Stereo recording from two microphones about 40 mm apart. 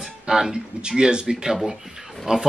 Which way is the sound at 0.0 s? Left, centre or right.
Centre.